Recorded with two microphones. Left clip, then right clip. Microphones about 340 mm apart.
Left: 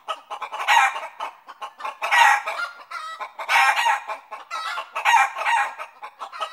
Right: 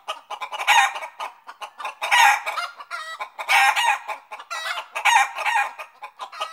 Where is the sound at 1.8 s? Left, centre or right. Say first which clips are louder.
Even; centre.